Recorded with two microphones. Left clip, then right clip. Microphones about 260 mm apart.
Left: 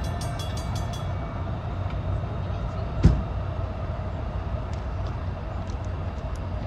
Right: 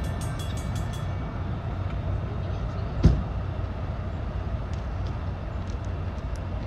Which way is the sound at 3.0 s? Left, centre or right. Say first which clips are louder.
Even; left.